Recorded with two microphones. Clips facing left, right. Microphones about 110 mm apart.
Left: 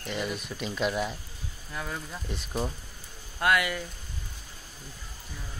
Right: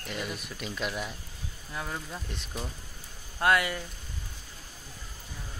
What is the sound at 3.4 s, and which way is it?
Speech, 30° right (ahead or behind).